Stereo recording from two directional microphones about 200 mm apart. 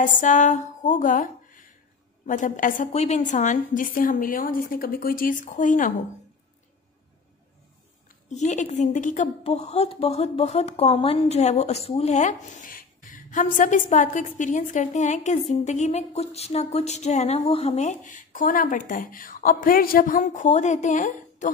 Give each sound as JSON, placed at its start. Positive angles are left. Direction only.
{"t": 0.0, "sound": "a woman's voice", "side_deg": 40}
{"t": 8.3, "sound": "a woman's voice", "side_deg": 35}